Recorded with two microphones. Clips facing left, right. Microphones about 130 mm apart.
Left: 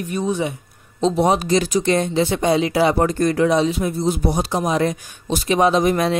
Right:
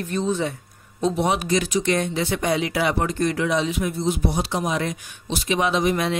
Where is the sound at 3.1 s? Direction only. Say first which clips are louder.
Left 5 dB; 40° left (ahead or behind).